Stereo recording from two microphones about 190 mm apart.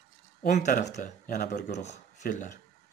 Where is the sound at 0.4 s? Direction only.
40° left (ahead or behind).